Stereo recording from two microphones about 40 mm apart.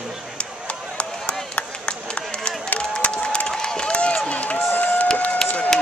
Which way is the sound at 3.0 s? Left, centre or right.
Left.